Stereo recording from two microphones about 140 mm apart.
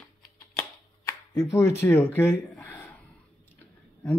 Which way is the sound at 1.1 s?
20° left (ahead or behind).